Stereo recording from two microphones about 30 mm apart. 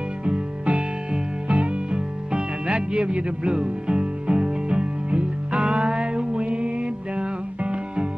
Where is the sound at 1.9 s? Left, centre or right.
Right.